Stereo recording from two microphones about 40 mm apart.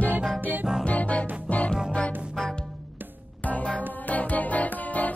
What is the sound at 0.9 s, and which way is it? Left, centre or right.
Music, left.